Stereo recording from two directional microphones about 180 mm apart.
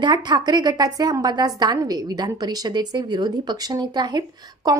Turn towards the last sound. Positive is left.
turn(degrees=-20)  # may be behind; listen again after turning